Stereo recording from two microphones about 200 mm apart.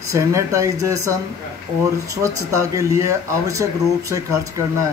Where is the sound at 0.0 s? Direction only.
15° right (ahead or behind).